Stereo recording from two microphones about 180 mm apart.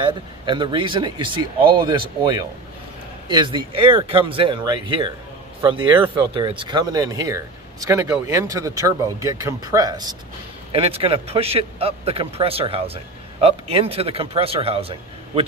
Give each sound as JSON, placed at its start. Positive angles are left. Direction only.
{"t": 0.0, "sound": "speech", "side_deg": -25}
{"t": 10.7, "sound": "a man's voice", "side_deg": -30}